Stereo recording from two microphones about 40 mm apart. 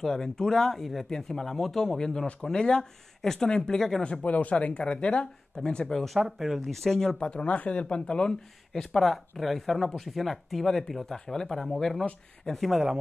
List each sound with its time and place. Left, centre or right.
0.0 s speech: centre
4.0 s speech: left
6.1 s speech: centre
7.2 s speech: left
7.8 s speech: left
8.7 s speech: centre